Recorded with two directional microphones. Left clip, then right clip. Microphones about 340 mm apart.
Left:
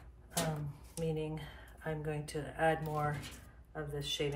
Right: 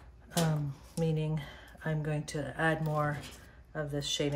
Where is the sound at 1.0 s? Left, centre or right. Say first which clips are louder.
Right 3 dB; right.